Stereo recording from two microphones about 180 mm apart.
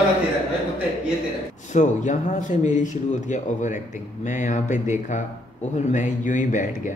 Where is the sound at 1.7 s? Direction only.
40° left (ahead or behind).